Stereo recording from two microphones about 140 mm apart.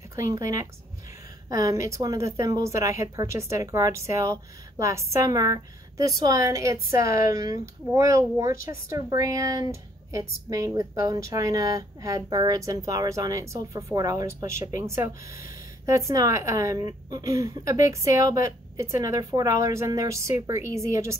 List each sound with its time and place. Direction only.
0.1 s speech: 25° right (ahead or behind)